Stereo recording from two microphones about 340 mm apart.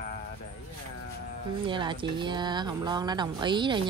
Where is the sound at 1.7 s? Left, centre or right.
Centre.